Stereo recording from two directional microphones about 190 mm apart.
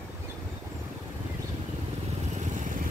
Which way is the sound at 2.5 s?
40° right (ahead or behind).